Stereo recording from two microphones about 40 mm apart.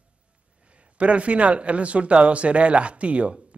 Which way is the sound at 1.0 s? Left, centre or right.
Right.